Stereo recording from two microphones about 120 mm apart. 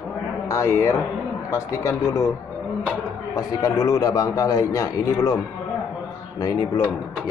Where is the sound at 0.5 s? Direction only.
25° left (ahead or behind).